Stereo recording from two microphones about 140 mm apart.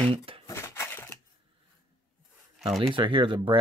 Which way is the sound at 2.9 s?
35° right (ahead or behind).